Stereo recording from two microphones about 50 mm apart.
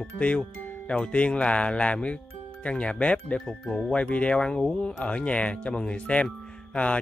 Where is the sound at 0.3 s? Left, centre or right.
Centre.